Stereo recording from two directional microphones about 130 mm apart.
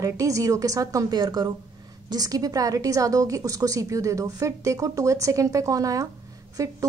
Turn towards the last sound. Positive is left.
turn(degrees=-25)  # may be behind; listen again after turning